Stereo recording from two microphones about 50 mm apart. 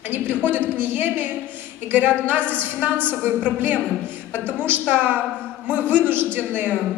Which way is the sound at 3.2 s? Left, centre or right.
Right.